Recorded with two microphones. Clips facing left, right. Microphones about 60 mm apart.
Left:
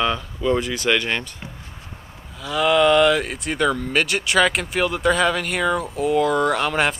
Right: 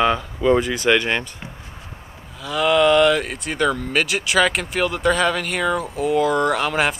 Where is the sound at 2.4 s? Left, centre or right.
Centre.